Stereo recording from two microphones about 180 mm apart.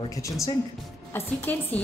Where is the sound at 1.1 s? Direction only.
10° left (ahead or behind).